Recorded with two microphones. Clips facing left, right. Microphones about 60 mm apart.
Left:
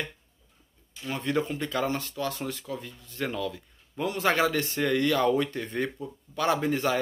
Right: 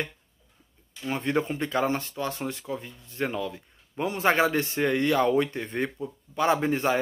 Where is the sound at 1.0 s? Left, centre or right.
Right.